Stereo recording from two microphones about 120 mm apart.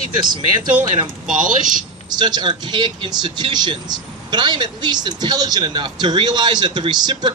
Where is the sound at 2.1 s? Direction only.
35° right (ahead or behind).